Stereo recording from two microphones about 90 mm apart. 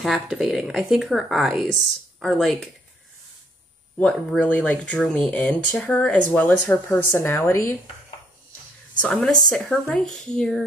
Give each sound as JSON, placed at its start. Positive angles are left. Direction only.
{"t": 0.3, "sound": "speech", "side_deg": -5}
{"t": 4.0, "sound": "speech", "side_deg": 15}
{"t": 7.1, "sound": "a woman's voice", "side_deg": 30}
{"t": 9.0, "sound": "speech", "side_deg": 5}